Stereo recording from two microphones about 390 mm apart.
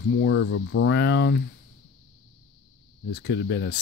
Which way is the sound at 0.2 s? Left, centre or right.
Left.